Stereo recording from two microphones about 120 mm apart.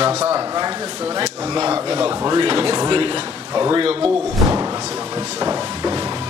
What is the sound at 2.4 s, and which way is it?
Speech, 40° right (ahead or behind).